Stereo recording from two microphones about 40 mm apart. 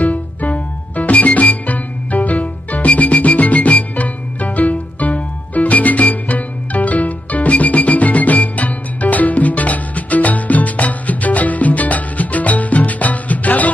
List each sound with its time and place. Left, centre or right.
0.0 s music: left